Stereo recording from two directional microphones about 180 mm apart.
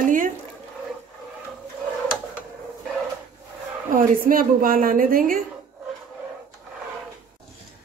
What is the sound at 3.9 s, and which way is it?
A woman's voice, 50° right (ahead or behind).